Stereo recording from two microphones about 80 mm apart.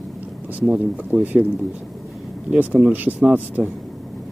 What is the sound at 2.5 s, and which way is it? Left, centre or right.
Speech, centre.